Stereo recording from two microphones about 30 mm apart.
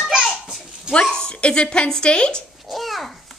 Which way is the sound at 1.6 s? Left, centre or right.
Left.